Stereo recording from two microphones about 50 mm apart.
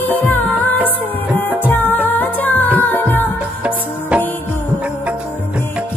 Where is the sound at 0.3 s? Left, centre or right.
Left.